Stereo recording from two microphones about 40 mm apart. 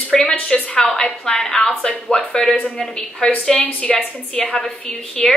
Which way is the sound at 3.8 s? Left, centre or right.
Left.